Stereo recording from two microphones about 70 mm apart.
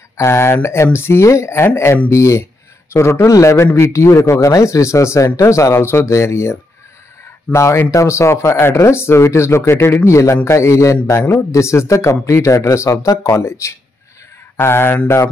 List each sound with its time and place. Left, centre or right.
0.2 s a man's voice: left